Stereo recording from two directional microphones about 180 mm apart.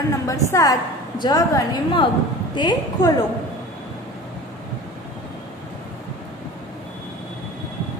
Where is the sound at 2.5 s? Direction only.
25° left (ahead or behind).